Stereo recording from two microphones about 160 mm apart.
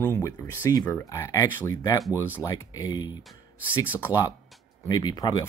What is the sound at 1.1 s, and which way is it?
Speech, 20° left (ahead or behind).